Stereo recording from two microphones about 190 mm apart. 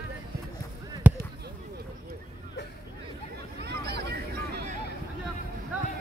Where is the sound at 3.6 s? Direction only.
60° right (ahead or behind).